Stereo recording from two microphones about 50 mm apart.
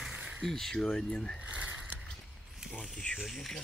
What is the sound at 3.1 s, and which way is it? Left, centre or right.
Speech, centre.